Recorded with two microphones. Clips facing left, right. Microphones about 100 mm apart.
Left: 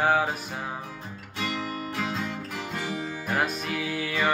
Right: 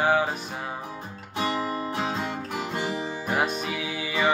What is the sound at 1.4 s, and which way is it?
Guitar, 35° right (ahead or behind).